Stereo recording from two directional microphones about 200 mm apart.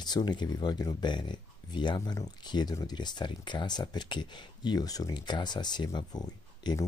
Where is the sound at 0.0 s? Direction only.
20° left (ahead or behind).